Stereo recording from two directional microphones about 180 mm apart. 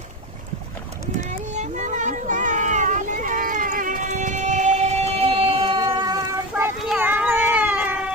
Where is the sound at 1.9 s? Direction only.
45° right (ahead or behind); by 6.2 s 25° right (ahead or behind).